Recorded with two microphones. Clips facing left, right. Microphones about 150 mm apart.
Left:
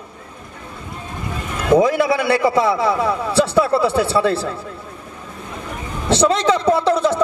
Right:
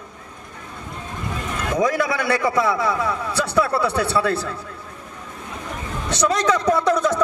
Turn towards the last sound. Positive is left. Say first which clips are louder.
# left 2 dB
turn(degrees=25)  # may be behind; listen again after turning